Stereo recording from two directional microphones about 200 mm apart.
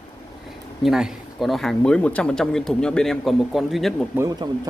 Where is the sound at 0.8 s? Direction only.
Centre (ahead or behind).